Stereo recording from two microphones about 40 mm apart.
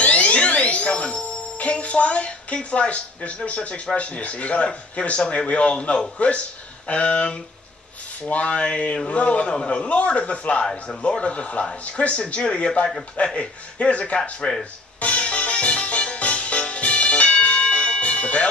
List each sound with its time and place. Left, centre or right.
0.0 s alarm: left
3.4 s speech: left
15.0 s music: left